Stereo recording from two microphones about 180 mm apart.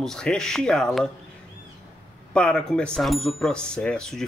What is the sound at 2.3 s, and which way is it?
Speech, 5° left (ahead or behind).